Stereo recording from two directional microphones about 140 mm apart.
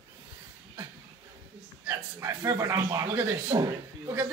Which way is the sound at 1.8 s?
20° right (ahead or behind).